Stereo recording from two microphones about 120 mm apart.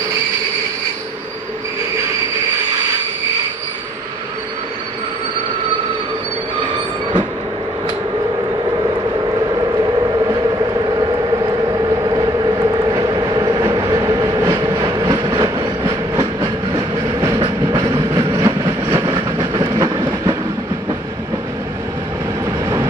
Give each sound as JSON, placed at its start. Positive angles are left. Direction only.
{"t": 10.2, "sound": "vehicle", "side_deg": -30}
{"t": 15.8, "sound": "train", "side_deg": -30}
{"t": 17.6, "sound": "train", "side_deg": -30}